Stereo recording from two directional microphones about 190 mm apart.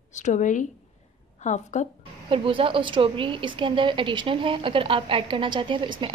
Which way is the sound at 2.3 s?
25° right (ahead or behind).